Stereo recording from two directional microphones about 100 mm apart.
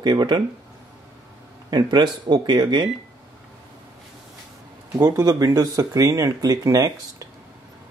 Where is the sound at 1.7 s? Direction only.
45° right (ahead or behind).